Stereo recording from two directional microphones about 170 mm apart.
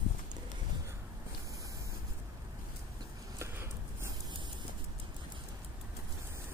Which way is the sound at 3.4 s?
15° right (ahead or behind).